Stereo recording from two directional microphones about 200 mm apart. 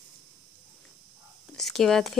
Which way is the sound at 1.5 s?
Centre (ahead or behind).